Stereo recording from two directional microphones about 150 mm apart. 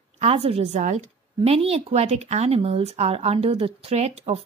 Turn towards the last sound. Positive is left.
turn(degrees=-45)  # may be behind; listen again after turning